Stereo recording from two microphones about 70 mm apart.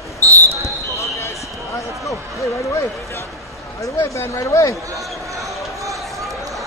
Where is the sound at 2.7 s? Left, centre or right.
Left.